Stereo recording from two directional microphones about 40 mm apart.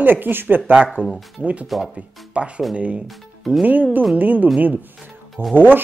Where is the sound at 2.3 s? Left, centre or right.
Right.